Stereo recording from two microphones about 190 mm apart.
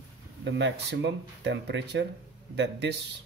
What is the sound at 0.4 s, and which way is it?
Speech, 65° right (ahead or behind).